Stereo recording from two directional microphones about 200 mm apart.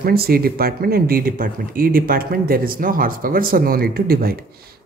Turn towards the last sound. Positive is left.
turn(degrees=-50)  # may be behind; listen again after turning